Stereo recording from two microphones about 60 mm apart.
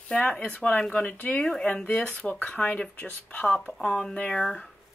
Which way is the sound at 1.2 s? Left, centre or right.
Left.